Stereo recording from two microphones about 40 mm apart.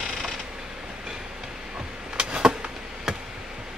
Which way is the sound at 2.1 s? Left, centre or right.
Centre.